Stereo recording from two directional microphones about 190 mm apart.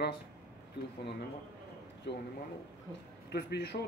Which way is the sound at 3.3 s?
60° left (ahead or behind).